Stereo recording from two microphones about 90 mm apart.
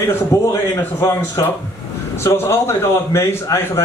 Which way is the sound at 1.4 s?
45° left (ahead or behind).